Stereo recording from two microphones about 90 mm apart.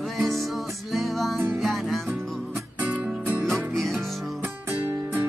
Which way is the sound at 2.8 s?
20° right (ahead or behind).